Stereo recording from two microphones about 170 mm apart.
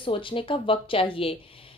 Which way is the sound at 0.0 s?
30° left (ahead or behind).